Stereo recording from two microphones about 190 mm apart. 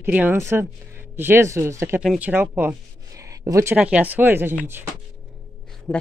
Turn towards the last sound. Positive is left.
turn(degrees=5)  # may be behind; listen again after turning